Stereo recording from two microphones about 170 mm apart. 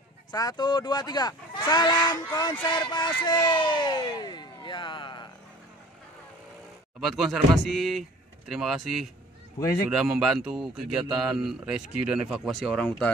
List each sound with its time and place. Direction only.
0.3 s speech: 25° left (ahead or behind)
7.0 s speech: centre (ahead or behind)